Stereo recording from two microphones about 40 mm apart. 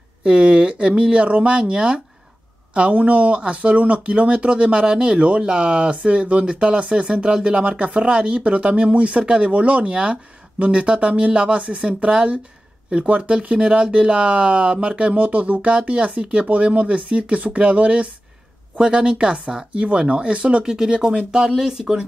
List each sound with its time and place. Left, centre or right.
0.2 s speech: right
20.6 s speech: centre